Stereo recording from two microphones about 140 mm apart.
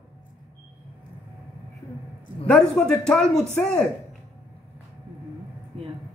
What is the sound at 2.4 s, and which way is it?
Speech, 5° left (ahead or behind).